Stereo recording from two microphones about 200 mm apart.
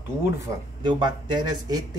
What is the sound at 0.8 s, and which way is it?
Speech, 20° right (ahead or behind).